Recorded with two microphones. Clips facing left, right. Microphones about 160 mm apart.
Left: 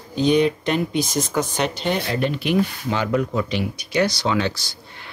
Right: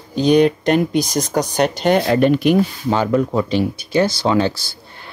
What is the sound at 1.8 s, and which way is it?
Speech, 65° right (ahead or behind).